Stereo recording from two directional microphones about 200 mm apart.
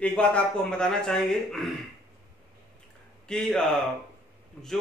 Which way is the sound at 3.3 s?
5° left (ahead or behind).